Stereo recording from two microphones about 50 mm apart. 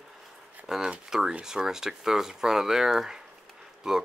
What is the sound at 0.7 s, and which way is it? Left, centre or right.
Speech, centre.